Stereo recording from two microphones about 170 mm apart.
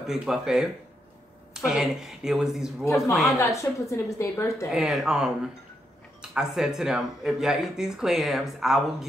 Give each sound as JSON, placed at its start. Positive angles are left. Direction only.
{"t": 0.0, "sound": "speech", "side_deg": 0}
{"t": 3.3, "sound": "a woman's voice", "side_deg": 20}
{"t": 4.6, "sound": "speech", "side_deg": -5}
{"t": 6.3, "sound": "speech", "side_deg": -5}